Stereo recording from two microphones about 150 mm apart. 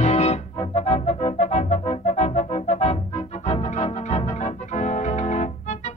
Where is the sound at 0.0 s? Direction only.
45° left (ahead or behind).